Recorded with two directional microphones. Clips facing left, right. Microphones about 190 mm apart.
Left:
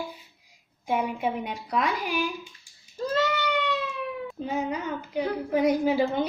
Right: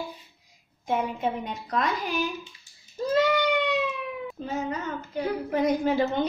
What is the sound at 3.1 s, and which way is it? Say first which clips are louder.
Cat: right 4 dB; 15° right (ahead or behind).